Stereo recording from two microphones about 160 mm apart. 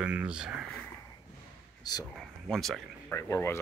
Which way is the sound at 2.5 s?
Centre (ahead or behind).